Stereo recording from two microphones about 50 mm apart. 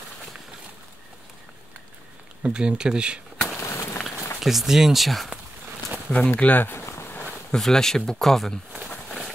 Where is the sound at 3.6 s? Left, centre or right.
Left.